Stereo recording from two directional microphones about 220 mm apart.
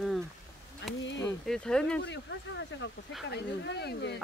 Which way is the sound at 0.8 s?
55° left (ahead or behind).